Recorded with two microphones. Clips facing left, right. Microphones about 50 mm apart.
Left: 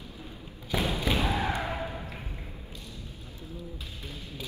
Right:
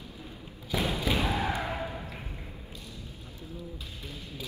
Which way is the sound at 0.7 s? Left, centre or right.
Left.